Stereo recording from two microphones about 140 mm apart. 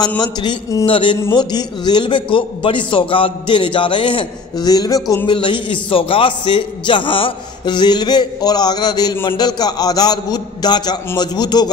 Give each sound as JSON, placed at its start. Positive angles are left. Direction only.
{"t": 0.2, "sound": "a man's voice", "side_deg": 30}
{"t": 0.8, "sound": "a man's voice", "side_deg": 40}